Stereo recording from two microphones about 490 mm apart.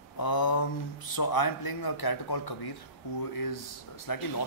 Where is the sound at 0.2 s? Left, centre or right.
Left.